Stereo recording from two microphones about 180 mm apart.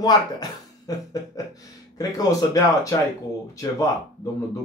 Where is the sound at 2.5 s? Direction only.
20° left (ahead or behind).